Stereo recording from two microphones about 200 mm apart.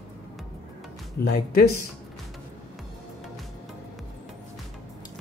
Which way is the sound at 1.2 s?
50° left (ahead or behind).